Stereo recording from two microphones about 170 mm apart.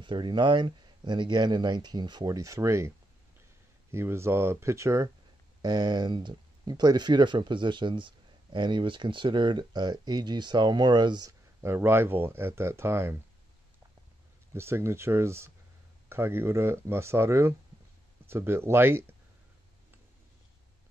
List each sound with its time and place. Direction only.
0.0 s speech: 30° right (ahead or behind)
3.9 s speech: 15° right (ahead or behind)
14.5 s speech: 15° right (ahead or behind)